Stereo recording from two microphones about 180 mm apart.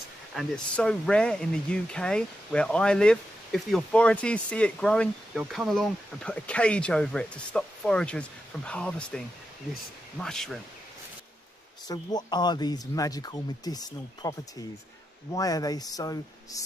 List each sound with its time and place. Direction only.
0.3 s speech: centre (ahead or behind)
11.9 s speech: 20° left (ahead or behind)